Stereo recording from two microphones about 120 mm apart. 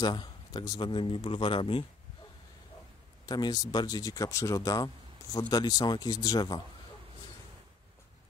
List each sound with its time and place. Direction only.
0.0 s a man's voice: 35° left (ahead or behind)
3.3 s speech: 35° left (ahead or behind)